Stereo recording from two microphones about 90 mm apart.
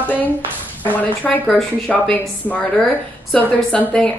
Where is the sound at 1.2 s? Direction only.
20° left (ahead or behind).